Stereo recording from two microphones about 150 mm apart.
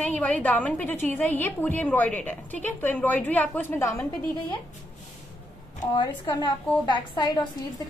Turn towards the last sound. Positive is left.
turn(degrees=30)  # may be behind; listen again after turning